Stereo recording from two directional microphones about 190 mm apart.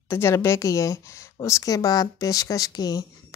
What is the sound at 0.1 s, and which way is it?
A woman's voice, 15° left (ahead or behind).